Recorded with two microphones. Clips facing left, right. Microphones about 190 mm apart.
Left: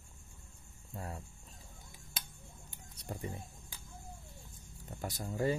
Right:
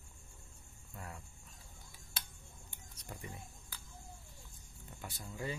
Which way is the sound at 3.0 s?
30° left (ahead or behind).